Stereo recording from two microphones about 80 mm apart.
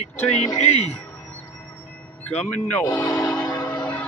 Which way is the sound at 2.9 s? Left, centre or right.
Left.